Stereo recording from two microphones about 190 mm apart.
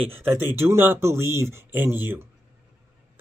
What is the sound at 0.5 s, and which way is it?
Speech, 10° right (ahead or behind).